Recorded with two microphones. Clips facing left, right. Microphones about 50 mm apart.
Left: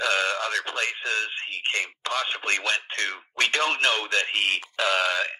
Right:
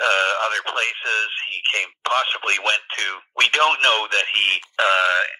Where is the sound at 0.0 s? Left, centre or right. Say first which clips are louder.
Right 6 dB; right.